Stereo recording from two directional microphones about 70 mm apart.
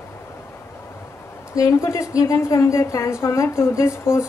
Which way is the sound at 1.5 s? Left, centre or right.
Left.